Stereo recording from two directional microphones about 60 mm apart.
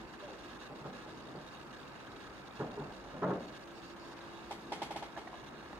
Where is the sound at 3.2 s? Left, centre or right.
Centre.